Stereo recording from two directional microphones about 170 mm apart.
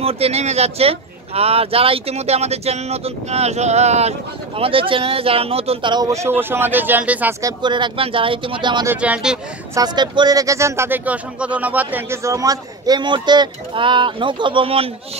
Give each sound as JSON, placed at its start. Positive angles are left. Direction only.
{"t": 0.0, "sound": "a man's voice", "side_deg": -35}
{"t": 7.6, "sound": "a man's voice", "side_deg": -25}
{"t": 8.8, "sound": "speech", "side_deg": -10}
{"t": 9.8, "sound": "a man's voice", "side_deg": -25}